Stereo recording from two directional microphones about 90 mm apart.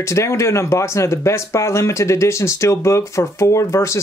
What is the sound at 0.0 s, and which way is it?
Speech, 30° left (ahead or behind).